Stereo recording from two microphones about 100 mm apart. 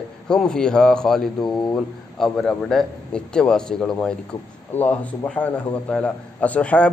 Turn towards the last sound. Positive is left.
turn(degrees=15)  # may be behind; listen again after turning